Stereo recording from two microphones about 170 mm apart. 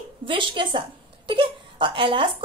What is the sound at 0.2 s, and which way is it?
Speech, 30° right (ahead or behind).